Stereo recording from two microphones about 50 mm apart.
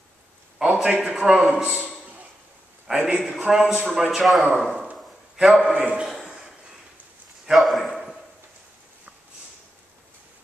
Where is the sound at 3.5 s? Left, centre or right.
Centre.